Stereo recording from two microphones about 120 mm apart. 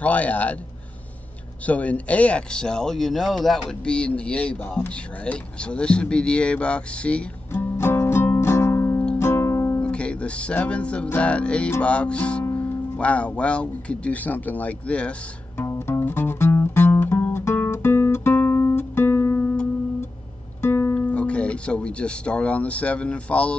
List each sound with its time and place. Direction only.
0.0 s speech: 10° left (ahead or behind)
1.7 s speech: 10° left (ahead or behind)
7.7 s music: 20° left (ahead or behind)
9.8 s music: 10° left (ahead or behind)
11.8 s speech: 10° left (ahead or behind)
15.5 s music: 20° left (ahead or behind)
20.6 s speech: 20° left (ahead or behind)